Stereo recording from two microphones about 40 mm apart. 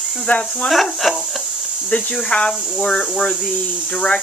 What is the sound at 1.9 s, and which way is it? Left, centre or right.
Speech, left.